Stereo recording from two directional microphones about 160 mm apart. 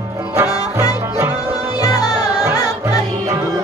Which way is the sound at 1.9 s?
25° left (ahead or behind).